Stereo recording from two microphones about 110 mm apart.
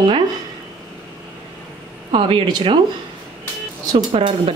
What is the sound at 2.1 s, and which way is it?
Speech, 50° right (ahead or behind).